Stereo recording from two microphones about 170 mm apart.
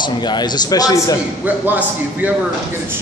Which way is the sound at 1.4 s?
10° right (ahead or behind).